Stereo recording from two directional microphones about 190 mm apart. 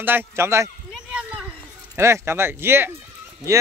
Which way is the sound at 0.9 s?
Centre (ahead or behind).